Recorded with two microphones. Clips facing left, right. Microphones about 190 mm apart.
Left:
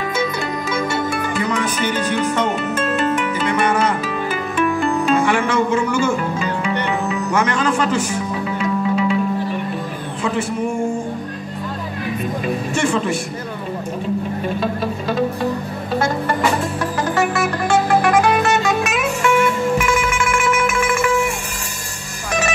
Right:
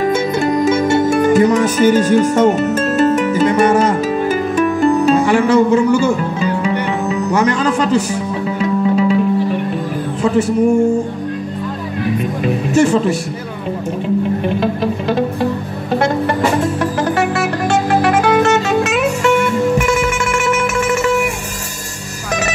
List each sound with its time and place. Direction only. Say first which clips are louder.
0.0 s music: right 7 dB; 45° right (ahead or behind)
12.7 s speech: right 8 dB; 40° right (ahead or behind)